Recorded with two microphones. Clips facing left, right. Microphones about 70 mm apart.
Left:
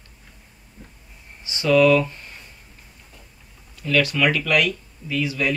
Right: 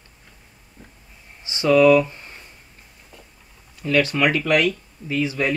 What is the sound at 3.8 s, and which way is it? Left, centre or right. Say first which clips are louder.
Speech: right 1 dB; right.